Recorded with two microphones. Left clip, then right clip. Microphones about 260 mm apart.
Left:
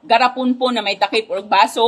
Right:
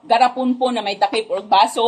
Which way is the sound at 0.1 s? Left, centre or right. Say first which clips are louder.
Left 1 dB; left.